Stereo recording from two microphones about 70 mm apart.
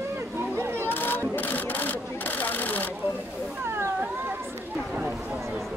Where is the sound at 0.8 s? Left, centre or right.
Left.